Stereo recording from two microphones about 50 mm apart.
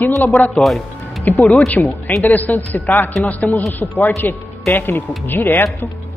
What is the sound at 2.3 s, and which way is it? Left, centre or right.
Speech, left.